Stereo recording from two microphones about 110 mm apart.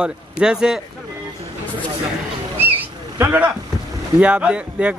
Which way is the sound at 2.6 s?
20° right (ahead or behind).